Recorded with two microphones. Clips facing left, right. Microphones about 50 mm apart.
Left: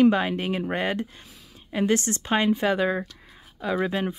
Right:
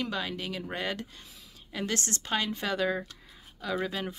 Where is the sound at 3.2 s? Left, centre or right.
Left.